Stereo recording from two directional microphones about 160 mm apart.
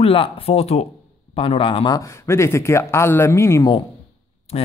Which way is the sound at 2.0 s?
20° left (ahead or behind).